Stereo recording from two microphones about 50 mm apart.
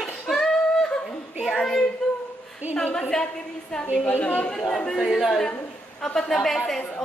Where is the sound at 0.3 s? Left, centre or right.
Centre.